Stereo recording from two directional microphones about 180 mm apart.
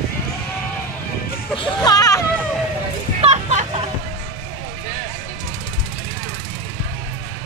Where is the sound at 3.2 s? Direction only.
35° right (ahead or behind).